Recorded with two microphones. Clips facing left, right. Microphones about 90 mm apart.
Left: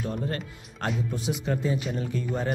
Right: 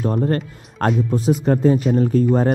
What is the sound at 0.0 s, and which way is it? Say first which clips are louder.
Speech: right 11 dB; 45° right (ahead or behind).